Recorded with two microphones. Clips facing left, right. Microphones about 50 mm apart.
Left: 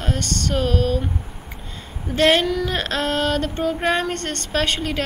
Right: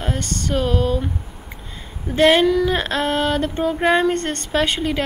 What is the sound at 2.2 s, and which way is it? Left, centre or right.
A woman's voice, centre.